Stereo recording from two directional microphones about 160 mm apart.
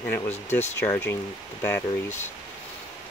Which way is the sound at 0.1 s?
15° left (ahead or behind).